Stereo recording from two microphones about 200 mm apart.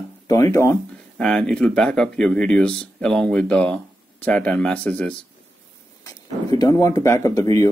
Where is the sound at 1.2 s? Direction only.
5° left (ahead or behind).